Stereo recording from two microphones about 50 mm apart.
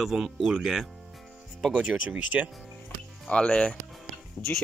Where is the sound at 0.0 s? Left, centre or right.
Centre.